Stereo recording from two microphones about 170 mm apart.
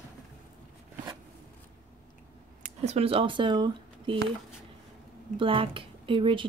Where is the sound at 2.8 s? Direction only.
35° right (ahead or behind).